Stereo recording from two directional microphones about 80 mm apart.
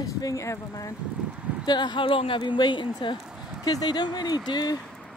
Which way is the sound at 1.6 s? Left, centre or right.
Left.